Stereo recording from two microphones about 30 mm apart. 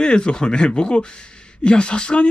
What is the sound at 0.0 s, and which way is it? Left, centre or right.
Speech, left.